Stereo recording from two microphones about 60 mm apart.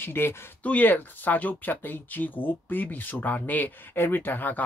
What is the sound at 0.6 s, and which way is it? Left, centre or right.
Speech, left.